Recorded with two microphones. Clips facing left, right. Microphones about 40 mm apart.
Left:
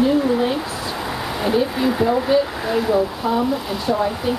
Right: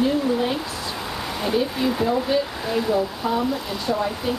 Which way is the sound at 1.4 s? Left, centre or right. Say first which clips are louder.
Left 3 dB; centre.